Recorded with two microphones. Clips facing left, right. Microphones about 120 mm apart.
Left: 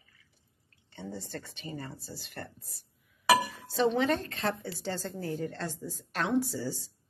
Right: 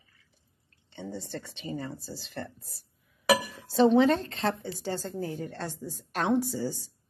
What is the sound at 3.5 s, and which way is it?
A woman's voice, 30° right (ahead or behind).